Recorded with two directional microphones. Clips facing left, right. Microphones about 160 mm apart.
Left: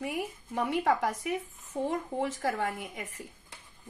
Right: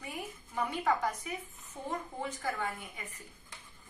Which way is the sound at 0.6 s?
85° left.